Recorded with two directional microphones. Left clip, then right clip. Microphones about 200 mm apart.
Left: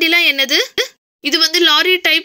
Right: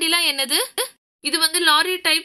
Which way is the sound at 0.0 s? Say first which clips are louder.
Left 7 dB; 10° left (ahead or behind).